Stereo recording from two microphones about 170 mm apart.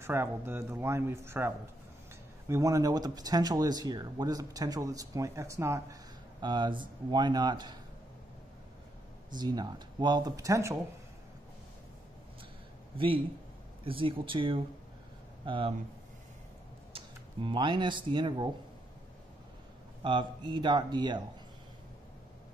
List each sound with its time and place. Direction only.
0.0 s speech: 15° right (ahead or behind)
9.3 s speech: 25° right (ahead or behind)
12.9 s a man's voice: 30° right (ahead or behind)
16.9 s speech: 30° right (ahead or behind)
20.0 s speech: 30° right (ahead or behind)